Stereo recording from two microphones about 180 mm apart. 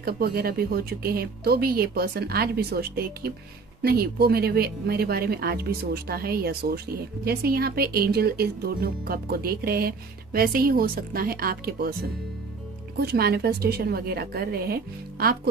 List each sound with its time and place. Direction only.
0.0 s speech: 55° right (ahead or behind)
13.0 s speech: 60° right (ahead or behind)